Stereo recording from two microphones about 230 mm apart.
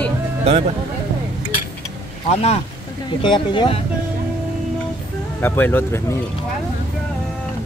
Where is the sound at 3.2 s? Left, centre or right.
Left.